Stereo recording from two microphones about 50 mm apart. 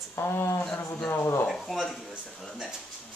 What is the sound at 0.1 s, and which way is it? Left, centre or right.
Speech, left.